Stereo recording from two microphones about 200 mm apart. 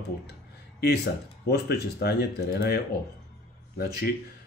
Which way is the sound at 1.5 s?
55° left (ahead or behind).